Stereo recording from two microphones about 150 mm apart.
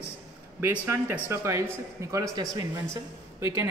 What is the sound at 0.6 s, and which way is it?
A man's voice, 15° right (ahead or behind).